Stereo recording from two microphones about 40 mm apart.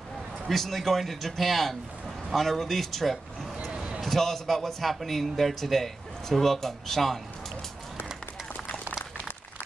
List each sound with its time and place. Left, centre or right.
0.5 s a man's voice: centre
3.7 s a sound: right
4.0 s a man's voice: centre